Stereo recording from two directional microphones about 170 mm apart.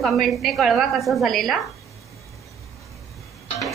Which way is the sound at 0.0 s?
Centre (ahead or behind).